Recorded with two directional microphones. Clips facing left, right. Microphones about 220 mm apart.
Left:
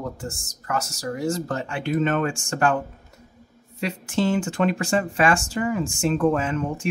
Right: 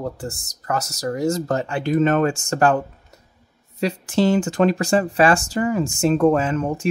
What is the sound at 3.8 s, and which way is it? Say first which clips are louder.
Speech: right 5 dB; 35° right (ahead or behind).